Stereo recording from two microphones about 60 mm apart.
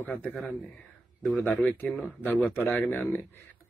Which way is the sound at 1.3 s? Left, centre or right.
Left.